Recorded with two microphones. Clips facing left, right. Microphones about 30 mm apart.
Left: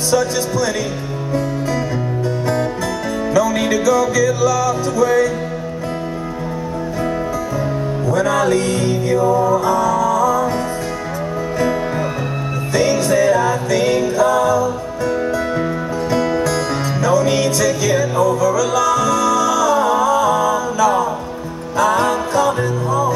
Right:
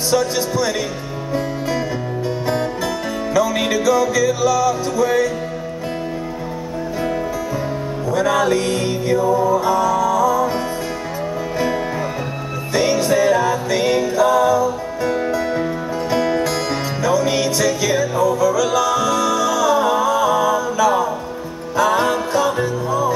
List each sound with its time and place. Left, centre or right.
0.1 s music: centre
3.3 s music: centre
8.1 s music: centre
12.7 s music: centre